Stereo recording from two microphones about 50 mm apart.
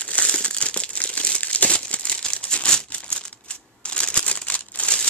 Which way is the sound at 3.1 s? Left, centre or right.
Left.